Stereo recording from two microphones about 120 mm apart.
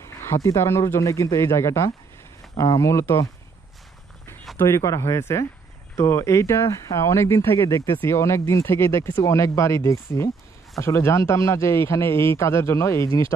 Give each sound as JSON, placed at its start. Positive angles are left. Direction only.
{"t": 0.0, "sound": "speech", "side_deg": 20}
{"t": 4.6, "sound": "speech", "side_deg": 25}